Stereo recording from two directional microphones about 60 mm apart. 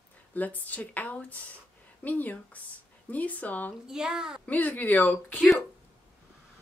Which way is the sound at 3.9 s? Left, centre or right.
Centre.